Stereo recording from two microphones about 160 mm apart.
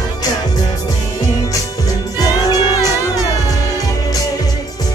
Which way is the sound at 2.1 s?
25° left (ahead or behind).